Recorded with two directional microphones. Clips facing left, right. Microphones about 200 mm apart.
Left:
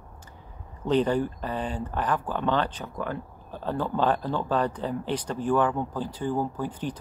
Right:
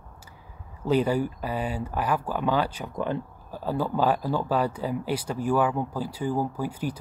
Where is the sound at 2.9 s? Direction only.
20° right (ahead or behind).